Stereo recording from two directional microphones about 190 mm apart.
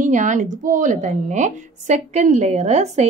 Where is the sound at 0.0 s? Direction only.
40° right (ahead or behind).